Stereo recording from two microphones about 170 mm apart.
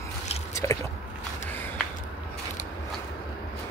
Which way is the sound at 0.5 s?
20° left (ahead or behind).